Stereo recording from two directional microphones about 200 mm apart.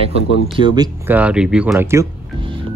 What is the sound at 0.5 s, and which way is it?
Speech, 20° right (ahead or behind).